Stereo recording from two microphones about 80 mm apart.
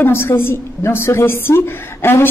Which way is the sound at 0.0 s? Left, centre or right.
Left.